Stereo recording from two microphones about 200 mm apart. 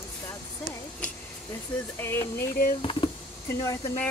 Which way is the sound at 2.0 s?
10° left (ahead or behind).